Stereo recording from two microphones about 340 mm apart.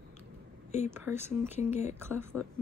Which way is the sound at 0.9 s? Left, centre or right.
Centre.